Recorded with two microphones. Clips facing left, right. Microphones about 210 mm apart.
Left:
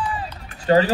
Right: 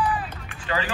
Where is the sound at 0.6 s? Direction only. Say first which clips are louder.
Left 12 dB; 40° left (ahead or behind).